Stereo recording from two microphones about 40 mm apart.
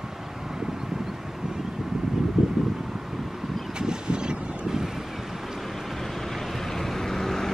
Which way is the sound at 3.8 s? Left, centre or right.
Centre.